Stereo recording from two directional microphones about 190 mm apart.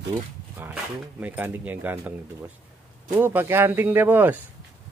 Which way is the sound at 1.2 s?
10° right (ahead or behind).